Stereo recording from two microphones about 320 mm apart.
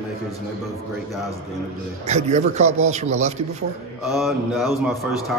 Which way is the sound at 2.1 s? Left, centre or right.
Right.